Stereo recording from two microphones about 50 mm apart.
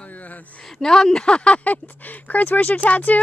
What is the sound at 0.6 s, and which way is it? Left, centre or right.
Speech, centre.